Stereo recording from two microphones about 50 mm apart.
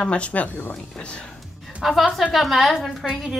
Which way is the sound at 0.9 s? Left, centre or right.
Left.